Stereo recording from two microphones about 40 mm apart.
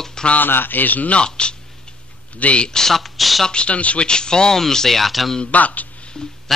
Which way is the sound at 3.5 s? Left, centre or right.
Left.